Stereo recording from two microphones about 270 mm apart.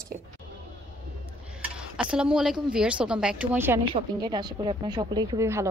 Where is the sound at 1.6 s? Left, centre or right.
Centre.